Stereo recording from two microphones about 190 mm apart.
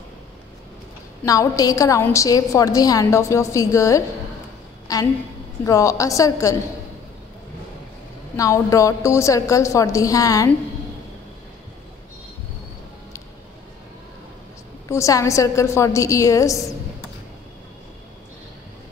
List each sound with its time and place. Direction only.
1.2 s a woman's voice: 20° left (ahead or behind)
8.4 s a woman's voice: 15° left (ahead or behind)
14.9 s a woman's voice: 15° left (ahead or behind)